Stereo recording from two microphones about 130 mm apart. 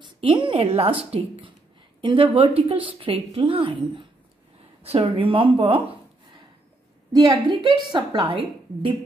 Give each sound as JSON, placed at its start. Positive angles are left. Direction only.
{"t": 0.0, "sound": "a woman's voice", "side_deg": -40}
{"t": 4.8, "sound": "a woman's voice", "side_deg": -45}
{"t": 7.1, "sound": "a woman's voice", "side_deg": -35}